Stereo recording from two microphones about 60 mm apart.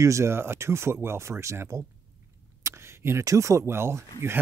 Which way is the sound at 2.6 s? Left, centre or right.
Right.